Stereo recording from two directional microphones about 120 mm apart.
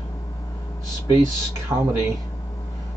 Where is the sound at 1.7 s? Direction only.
15° right (ahead or behind).